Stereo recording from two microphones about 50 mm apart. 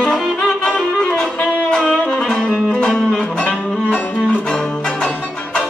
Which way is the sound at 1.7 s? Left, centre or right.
Centre.